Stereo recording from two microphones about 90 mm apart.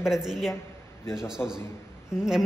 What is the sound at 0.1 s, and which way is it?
A man's voice, 5° right (ahead or behind).